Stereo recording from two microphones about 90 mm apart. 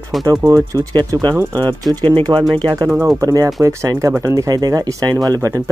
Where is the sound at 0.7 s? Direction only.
40° right (ahead or behind).